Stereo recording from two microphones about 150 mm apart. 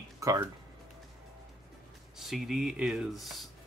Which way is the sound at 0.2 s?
20° right (ahead or behind).